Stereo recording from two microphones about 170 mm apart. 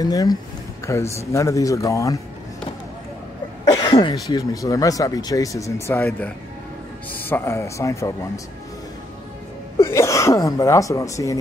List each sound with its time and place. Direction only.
0.0 s speech: 20° left (ahead or behind)
3.7 s speech: 30° left (ahead or behind)
9.8 s speech: 15° left (ahead or behind)